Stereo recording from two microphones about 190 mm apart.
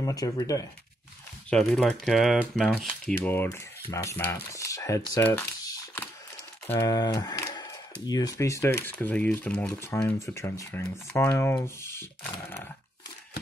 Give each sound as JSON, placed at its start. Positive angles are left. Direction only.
{"t": 0.0, "sound": "speech", "side_deg": 20}
{"t": 1.5, "sound": "speech", "side_deg": 0}